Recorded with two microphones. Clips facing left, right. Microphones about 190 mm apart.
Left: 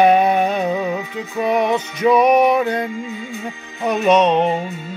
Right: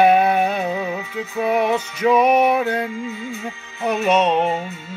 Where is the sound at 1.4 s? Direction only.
5° right (ahead or behind).